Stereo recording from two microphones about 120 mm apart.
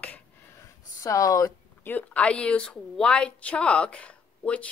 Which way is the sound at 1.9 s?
10° left (ahead or behind).